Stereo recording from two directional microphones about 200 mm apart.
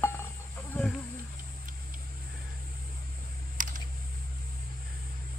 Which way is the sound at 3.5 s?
40° right (ahead or behind).